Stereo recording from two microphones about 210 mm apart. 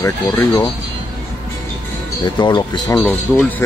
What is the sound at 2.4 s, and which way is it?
Speech, 20° left (ahead or behind).